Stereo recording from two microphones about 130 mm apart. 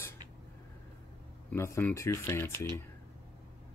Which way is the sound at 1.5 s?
20° left (ahead or behind).